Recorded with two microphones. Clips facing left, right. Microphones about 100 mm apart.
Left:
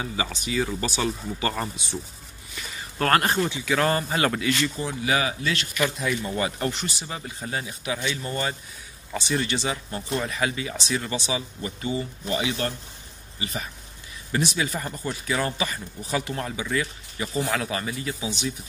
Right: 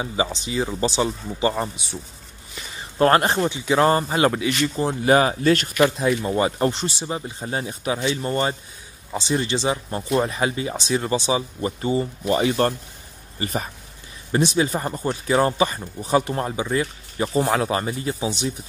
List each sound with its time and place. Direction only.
0.0 s speech: 25° right (ahead or behind)
4.7 s speech: 40° right (ahead or behind)
5.9 s speech: 30° right (ahead or behind)
9.1 s speech: 25° right (ahead or behind); by 13.7 s 45° right (ahead or behind)
14.3 s speech: 30° right (ahead or behind)